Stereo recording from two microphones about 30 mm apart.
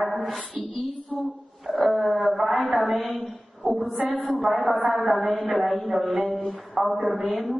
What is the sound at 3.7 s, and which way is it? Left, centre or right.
Speech, right.